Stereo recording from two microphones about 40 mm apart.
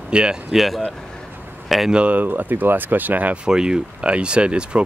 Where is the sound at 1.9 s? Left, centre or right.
Right.